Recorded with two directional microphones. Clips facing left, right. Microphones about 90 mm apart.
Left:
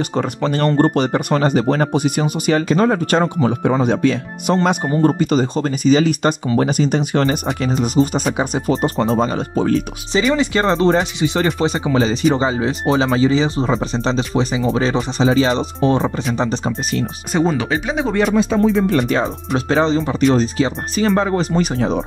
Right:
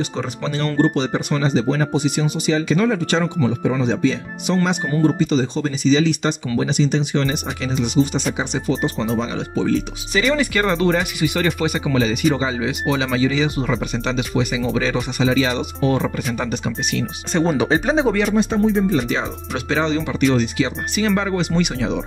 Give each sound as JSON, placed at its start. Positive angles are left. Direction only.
{"t": 0.1, "sound": "speech", "side_deg": 55}
{"t": 10.3, "sound": "speech", "side_deg": 25}
{"t": 17.3, "sound": "speech", "side_deg": 10}
{"t": 17.6, "sound": "speech", "side_deg": -35}
{"t": 18.9, "sound": "speech", "side_deg": 50}
{"t": 19.5, "sound": "speech", "side_deg": 35}